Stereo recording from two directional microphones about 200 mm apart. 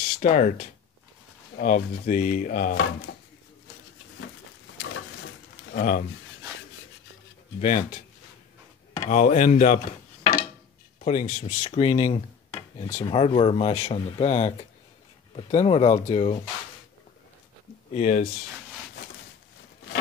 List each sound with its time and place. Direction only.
0.2 s speech: 40° left (ahead or behind)
5.7 s speech: 45° left (ahead or behind)
7.6 s speech: 40° left (ahead or behind)
17.9 s speech: 35° left (ahead or behind)